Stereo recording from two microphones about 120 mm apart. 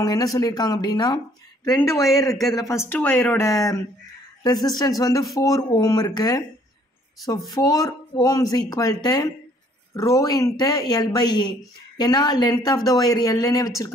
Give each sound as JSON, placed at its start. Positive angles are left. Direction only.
{"t": 0.0, "sound": "speech", "side_deg": 30}